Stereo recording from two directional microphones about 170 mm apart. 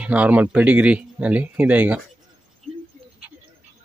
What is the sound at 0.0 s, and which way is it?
Speech, 10° right (ahead or behind).